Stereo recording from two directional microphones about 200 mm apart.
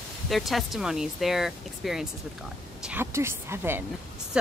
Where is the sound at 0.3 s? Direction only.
Centre (ahead or behind).